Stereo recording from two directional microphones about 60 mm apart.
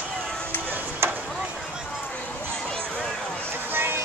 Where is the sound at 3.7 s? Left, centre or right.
Right.